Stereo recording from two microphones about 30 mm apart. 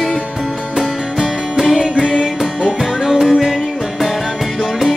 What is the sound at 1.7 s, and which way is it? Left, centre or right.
Music, right.